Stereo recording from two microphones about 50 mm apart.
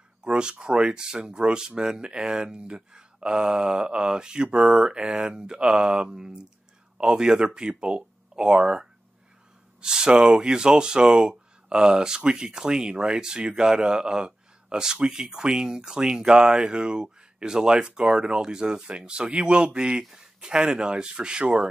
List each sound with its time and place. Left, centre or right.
0.2 s speech: centre